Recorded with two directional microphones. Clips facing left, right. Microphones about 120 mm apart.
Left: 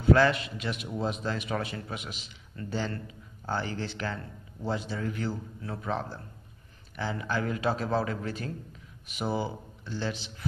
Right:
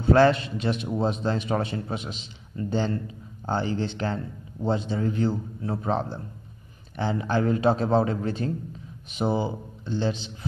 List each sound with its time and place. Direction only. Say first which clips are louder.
0.0 s a man's voice: right 4 dB; 30° right (ahead or behind)